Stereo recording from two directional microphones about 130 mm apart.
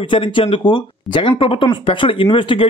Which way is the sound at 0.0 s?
40° left (ahead or behind).